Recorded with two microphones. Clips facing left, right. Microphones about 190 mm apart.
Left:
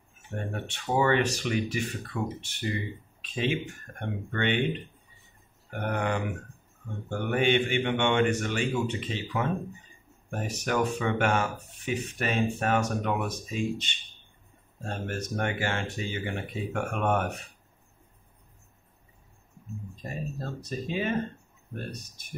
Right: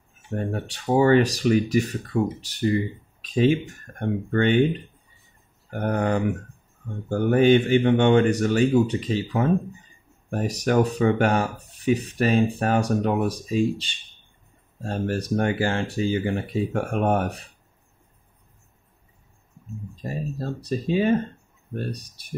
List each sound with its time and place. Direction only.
0.3 s speech: 35° right (ahead or behind)
5.7 s speech: 40° right (ahead or behind)
20.0 s speech: 35° right (ahead or behind)